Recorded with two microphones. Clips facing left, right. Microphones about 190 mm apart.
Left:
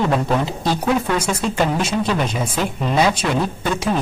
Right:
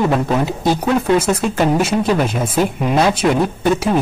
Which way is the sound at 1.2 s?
10° right (ahead or behind).